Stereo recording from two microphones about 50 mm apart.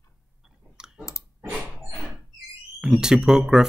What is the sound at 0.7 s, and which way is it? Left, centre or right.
Clicking, centre.